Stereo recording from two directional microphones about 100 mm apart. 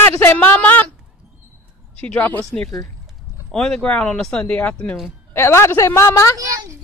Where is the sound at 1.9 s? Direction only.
10° left (ahead or behind).